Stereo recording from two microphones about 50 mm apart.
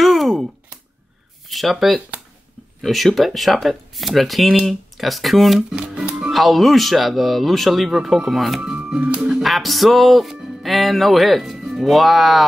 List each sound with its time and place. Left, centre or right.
0.0 s a sound: centre
1.5 s speech: centre
5.7 s speech: centre
6.3 s speech: centre
8.7 s music: right
9.4 s speech: centre